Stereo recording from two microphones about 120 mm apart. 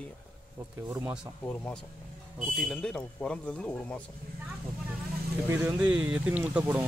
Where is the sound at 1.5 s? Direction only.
10° left (ahead or behind).